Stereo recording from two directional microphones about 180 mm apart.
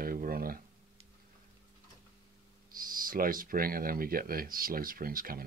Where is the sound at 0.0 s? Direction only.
55° right (ahead or behind).